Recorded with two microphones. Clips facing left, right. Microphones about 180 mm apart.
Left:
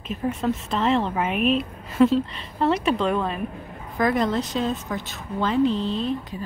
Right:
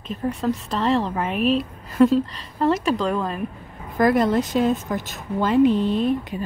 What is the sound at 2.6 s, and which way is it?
Speech, 5° left (ahead or behind).